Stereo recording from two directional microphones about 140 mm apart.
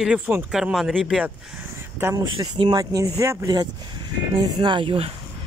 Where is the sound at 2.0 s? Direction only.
15° right (ahead or behind).